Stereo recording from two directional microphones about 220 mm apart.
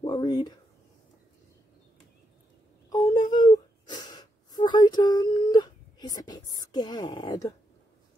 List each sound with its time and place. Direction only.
0.1 s speech: 20° left (ahead or behind)
2.9 s whimper: 20° left (ahead or behind)